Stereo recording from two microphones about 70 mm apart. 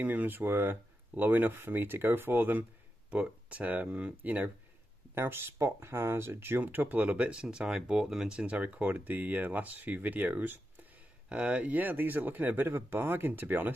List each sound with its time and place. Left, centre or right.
0.0 s speech: right
5.1 s speech: right